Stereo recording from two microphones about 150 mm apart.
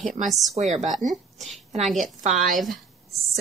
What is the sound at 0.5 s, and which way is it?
Speech, 50° right (ahead or behind).